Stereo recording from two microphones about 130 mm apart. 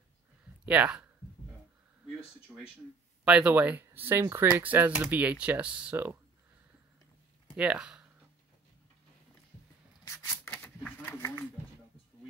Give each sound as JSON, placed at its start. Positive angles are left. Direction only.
{"t": 0.7, "sound": "speech", "side_deg": -10}
{"t": 2.5, "sound": "speech", "side_deg": -5}
{"t": 7.5, "sound": "speech", "side_deg": -10}
{"t": 10.0, "sound": "a sound", "side_deg": 20}